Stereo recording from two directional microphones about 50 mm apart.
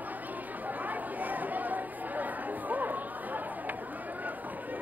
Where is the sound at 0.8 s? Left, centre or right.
Right.